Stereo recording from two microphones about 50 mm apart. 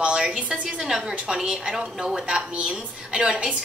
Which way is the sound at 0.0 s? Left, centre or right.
Centre.